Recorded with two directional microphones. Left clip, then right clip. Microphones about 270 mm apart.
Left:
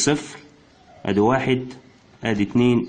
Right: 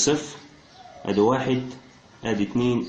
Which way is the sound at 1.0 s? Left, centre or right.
Left.